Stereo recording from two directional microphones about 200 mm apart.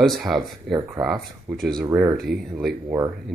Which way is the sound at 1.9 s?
10° right (ahead or behind).